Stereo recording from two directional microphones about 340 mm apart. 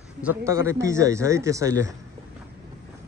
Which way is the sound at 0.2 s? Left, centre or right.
Centre.